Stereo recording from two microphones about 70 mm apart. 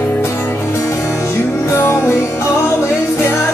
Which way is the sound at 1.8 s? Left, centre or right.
Left.